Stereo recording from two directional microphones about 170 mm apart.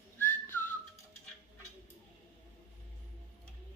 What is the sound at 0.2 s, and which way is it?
Whistling, 10° left (ahead or behind).